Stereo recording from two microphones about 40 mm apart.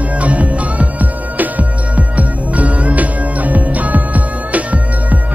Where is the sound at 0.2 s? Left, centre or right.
Right.